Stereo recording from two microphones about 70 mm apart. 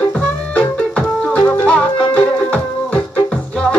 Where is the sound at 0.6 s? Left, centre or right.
Left.